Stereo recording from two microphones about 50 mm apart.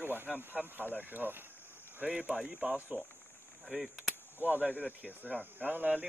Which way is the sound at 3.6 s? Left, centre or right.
Centre.